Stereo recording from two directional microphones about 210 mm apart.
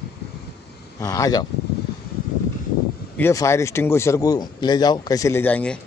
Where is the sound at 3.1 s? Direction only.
15° left (ahead or behind).